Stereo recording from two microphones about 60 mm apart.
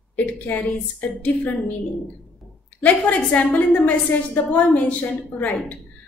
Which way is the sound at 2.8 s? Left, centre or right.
Left.